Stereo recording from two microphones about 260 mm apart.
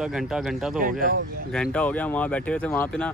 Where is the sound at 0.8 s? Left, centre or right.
Right.